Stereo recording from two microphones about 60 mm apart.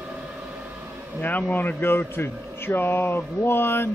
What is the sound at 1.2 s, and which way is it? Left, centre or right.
Speech, left.